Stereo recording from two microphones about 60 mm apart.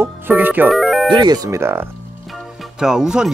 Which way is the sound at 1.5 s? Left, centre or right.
Right.